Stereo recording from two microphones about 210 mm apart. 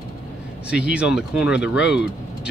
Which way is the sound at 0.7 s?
5° right (ahead or behind).